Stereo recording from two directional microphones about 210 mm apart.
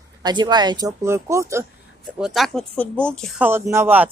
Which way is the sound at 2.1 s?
Centre (ahead or behind).